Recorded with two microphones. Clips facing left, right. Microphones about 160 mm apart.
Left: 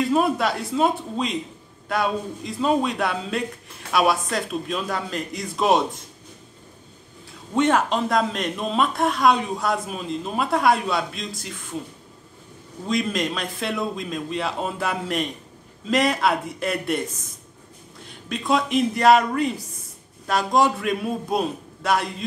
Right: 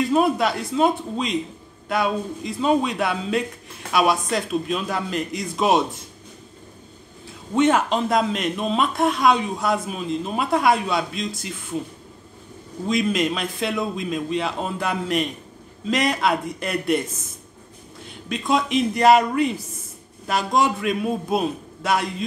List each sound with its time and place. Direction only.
0.1 s speech: centre (ahead or behind)
7.5 s speech: centre (ahead or behind)
12.8 s speech: 5° right (ahead or behind)
18.3 s speech: centre (ahead or behind)